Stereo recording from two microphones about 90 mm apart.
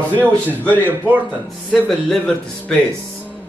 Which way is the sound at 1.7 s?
5° left (ahead or behind).